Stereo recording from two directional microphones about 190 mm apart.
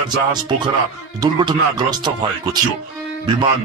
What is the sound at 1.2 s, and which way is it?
Music, 20° right (ahead or behind).